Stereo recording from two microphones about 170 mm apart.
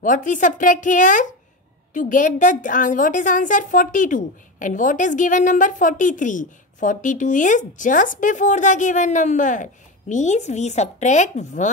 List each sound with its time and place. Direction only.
0.0 s a woman's voice: 50° left (ahead or behind)